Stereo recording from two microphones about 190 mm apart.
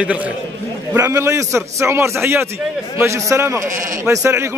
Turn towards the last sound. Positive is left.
turn(degrees=-15)  # may be behind; listen again after turning